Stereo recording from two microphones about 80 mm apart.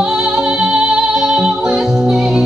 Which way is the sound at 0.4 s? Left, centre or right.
Centre.